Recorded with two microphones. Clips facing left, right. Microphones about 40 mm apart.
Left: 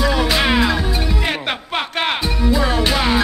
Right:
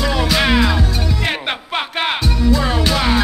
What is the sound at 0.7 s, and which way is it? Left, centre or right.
Music, centre.